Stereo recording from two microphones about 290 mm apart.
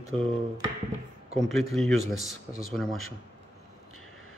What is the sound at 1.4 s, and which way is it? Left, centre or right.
Speech, centre.